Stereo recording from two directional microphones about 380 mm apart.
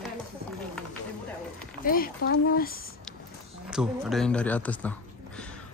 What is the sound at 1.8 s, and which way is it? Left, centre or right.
Speech, left.